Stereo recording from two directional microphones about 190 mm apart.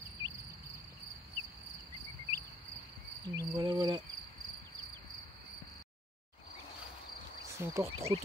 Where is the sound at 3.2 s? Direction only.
20° right (ahead or behind).